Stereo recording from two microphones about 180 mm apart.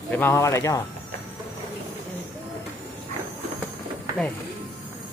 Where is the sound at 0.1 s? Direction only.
15° left (ahead or behind).